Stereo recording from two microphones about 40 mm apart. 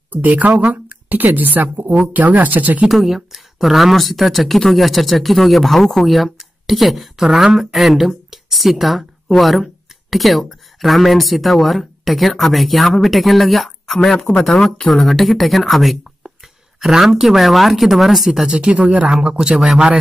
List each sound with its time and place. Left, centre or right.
0.1 s speech: right
2.9 s speech: centre
18.5 s a man's voice: right